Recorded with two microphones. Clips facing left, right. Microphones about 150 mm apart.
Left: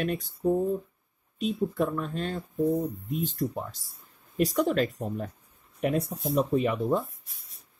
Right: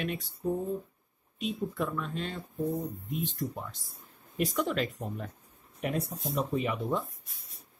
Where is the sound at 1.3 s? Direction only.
45° left (ahead or behind).